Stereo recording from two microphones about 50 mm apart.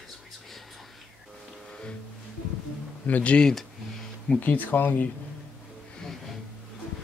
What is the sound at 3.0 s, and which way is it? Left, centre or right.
Speech, left.